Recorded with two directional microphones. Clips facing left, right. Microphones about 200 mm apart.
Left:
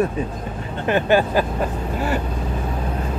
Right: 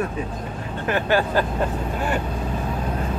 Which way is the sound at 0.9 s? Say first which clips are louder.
Left 3 dB; 15° left (ahead or behind).